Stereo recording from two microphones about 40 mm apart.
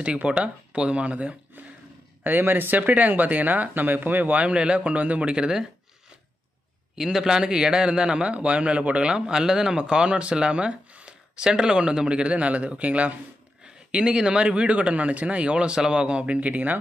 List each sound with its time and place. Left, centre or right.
0.0 s a man's voice: right
1.6 s a sound: right
2.2 s speech: right
2.9 s speech: right
4.4 s a man's voice: right
5.2 s a man's voice: right
7.0 s a man's voice: centre; by 13.1 s right
13.9 s a man's voice: right
16.3 s a man's voice: right